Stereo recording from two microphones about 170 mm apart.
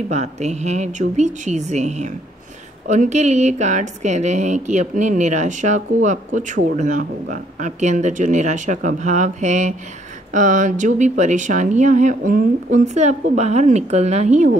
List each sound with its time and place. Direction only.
0.1 s speech: 40° right (ahead or behind)